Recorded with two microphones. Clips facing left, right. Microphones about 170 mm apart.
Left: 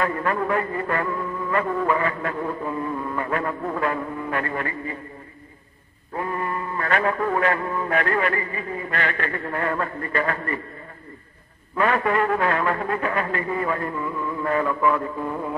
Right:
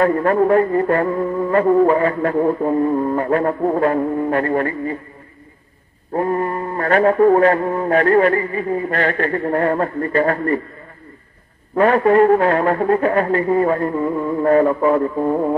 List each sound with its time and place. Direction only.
0.0 s music: 40° right (ahead or behind)
6.1 s music: 40° right (ahead or behind)
11.7 s music: 40° right (ahead or behind)